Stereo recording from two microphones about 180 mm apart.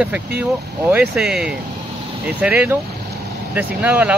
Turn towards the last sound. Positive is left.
turn(degrees=-10)  # may be behind; listen again after turning